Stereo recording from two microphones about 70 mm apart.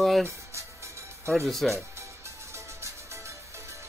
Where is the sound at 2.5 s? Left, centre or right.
Right.